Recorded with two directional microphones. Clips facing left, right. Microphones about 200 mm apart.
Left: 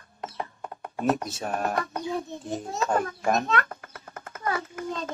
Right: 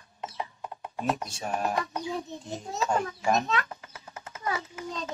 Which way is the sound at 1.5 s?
50° left (ahead or behind).